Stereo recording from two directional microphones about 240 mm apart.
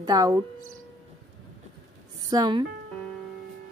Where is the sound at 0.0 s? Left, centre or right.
Centre.